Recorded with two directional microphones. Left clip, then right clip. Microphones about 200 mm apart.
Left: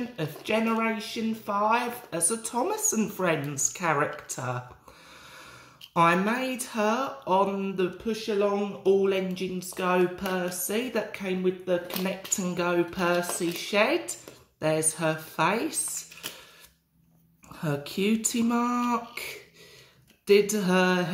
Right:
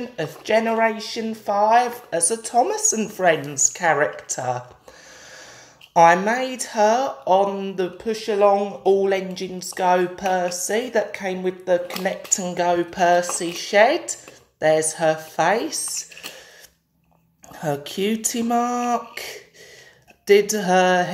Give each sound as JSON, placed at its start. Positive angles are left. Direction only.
{"t": 0.1, "sound": "speech", "side_deg": 30}
{"t": 5.9, "sound": "speech", "side_deg": 35}
{"t": 12.4, "sound": "a woman's voice", "side_deg": 30}
{"t": 17.5, "sound": "a woman's voice", "side_deg": 25}
{"t": 20.5, "sound": "a woman's voice", "side_deg": 30}